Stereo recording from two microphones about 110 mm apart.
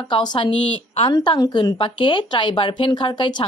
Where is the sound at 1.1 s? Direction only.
35° left (ahead or behind).